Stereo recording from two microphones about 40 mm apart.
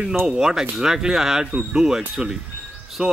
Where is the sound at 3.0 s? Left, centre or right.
Right.